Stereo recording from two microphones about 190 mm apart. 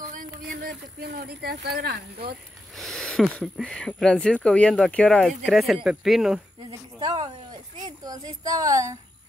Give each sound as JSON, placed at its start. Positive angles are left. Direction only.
{"t": 0.1, "sound": "speech", "side_deg": -45}
{"t": 2.8, "sound": "speech", "side_deg": 5}
{"t": 7.0, "sound": "speech", "side_deg": -20}